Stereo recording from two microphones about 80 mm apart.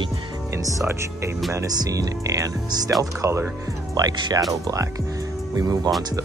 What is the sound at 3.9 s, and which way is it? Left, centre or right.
Speech, right.